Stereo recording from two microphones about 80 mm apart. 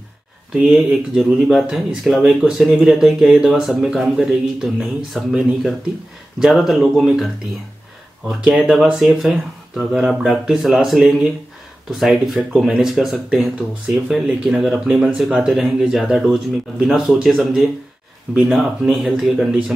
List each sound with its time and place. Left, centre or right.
0.5 s speech: centre
6.4 s speech: centre
8.3 s speech: centre